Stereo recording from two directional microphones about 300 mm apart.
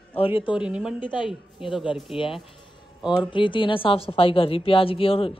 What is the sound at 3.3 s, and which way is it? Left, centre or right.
A woman's voice, centre.